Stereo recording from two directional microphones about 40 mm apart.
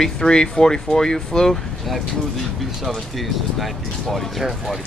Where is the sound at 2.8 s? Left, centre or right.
Centre.